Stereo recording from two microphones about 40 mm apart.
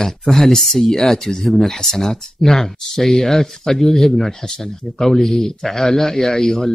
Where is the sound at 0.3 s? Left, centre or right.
Centre.